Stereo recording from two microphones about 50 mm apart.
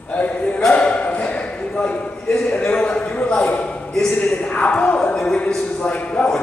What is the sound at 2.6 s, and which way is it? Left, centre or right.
A man's voice, centre.